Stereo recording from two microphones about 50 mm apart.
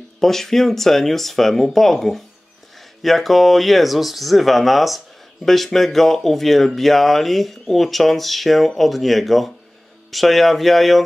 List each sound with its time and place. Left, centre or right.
0.2 s speech: centre